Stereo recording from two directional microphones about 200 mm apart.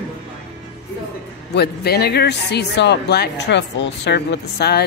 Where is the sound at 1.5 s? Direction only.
55° left (ahead or behind).